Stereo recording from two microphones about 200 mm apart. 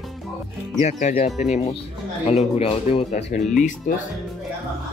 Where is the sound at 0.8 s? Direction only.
35° left (ahead or behind).